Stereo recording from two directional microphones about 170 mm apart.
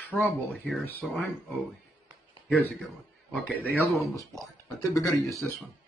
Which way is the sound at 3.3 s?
10° left (ahead or behind).